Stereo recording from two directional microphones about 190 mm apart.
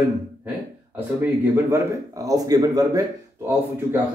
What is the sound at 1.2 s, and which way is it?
Speech, 15° right (ahead or behind).